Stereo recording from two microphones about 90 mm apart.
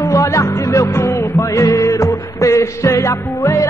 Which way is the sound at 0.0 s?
35° left (ahead or behind).